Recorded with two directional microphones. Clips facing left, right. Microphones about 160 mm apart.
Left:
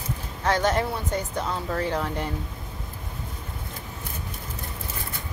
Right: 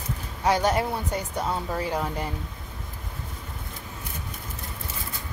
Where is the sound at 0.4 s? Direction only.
10° right (ahead or behind).